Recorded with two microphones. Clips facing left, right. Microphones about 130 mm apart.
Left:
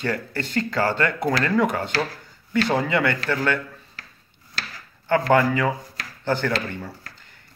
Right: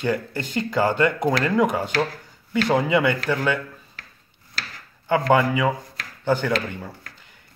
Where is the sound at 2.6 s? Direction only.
15° right (ahead or behind).